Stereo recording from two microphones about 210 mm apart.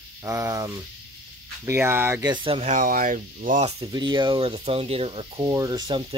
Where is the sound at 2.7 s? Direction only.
40° right (ahead or behind).